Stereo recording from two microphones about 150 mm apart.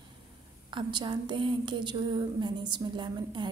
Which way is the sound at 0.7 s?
30° right (ahead or behind).